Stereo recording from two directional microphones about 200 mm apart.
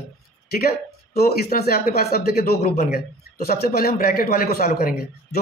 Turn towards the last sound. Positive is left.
turn(degrees=50)  # may be behind; listen again after turning